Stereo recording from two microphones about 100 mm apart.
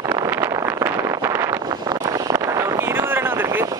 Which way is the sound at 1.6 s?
40° right (ahead or behind).